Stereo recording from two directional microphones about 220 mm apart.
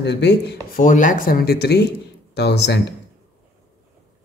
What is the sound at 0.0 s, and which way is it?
Speech, 50° left (ahead or behind).